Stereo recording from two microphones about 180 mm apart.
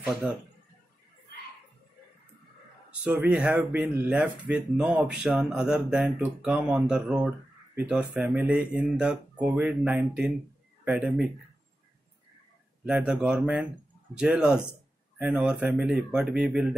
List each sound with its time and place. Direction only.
0.0 s speech: 5° right (ahead or behind)
2.9 s speech: 10° right (ahead or behind)
12.8 s speech: 5° right (ahead or behind)